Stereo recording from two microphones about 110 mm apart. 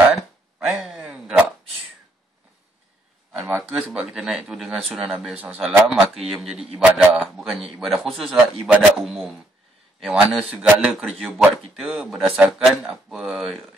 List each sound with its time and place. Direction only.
0.1 s a sound: 5° right (ahead or behind)
3.3 s a man's voice: 5° right (ahead or behind)
5.3 s a man's voice: 15° right (ahead or behind)
5.6 s a man's voice: 5° right (ahead or behind)